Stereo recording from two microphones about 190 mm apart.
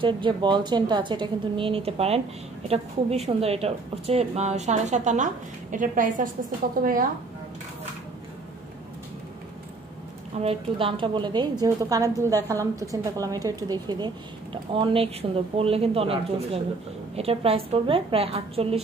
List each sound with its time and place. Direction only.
0.0 s a woman's voice: 25° right (ahead or behind); by 7.1 s 50° right (ahead or behind)
10.4 s a woman's voice: 30° right (ahead or behind)